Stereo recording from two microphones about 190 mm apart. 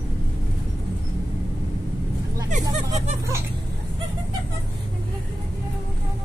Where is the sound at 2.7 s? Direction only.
35° right (ahead or behind).